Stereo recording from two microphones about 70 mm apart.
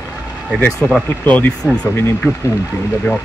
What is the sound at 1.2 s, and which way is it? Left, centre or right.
Speech, left.